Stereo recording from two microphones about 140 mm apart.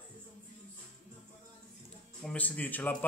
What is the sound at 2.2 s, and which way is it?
Speech, 10° left (ahead or behind).